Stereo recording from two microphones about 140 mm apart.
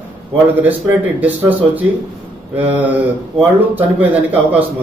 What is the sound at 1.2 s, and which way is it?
A man's voice, 10° right (ahead or behind).